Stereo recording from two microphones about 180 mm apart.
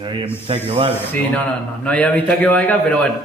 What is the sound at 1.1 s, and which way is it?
A man's voice, 10° left (ahead or behind).